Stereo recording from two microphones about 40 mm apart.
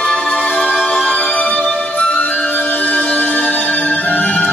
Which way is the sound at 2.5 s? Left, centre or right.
Left.